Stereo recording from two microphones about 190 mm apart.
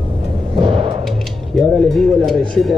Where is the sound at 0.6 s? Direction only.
25° right (ahead or behind).